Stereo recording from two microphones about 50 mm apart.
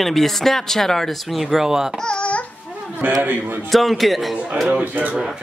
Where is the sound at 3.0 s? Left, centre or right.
Right.